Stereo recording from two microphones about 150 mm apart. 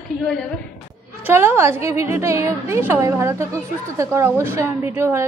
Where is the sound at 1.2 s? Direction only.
15° right (ahead or behind).